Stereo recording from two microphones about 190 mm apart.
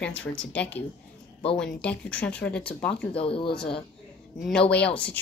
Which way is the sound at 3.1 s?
30° left (ahead or behind).